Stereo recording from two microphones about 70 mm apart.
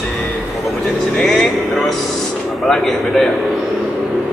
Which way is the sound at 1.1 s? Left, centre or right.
Centre.